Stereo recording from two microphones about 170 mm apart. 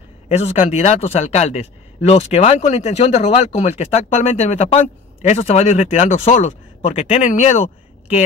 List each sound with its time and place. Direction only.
0.3 s speech: 40° left (ahead or behind)